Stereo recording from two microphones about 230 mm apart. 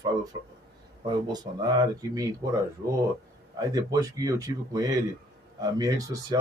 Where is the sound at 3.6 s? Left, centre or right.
Centre.